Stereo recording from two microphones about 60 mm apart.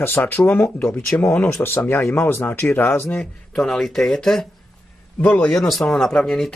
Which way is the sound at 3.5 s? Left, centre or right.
Centre.